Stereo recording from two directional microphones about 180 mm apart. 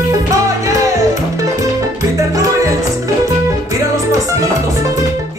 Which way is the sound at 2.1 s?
15° right (ahead or behind).